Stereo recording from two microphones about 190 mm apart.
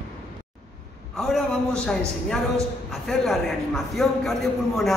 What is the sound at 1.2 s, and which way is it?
Speech, 5° left (ahead or behind).